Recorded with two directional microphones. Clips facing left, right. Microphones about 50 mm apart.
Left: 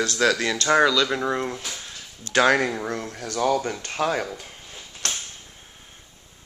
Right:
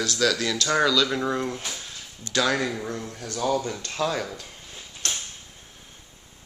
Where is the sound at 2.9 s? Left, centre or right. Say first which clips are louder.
Left 3 dB; left.